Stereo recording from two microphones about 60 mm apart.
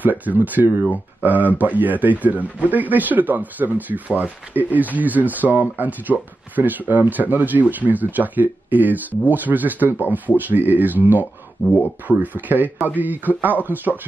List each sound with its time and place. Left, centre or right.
0.0 s speech: right
11.7 s speech: left
12.2 s speech: right